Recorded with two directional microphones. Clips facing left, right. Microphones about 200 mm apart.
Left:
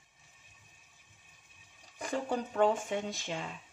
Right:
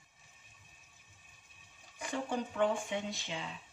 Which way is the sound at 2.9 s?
45° left (ahead or behind).